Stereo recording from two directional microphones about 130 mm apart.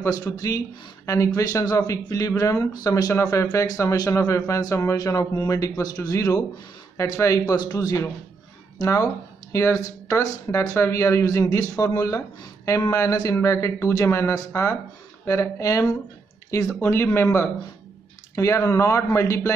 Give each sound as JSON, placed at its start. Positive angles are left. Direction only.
{"t": 1.0, "sound": "speech", "side_deg": 25}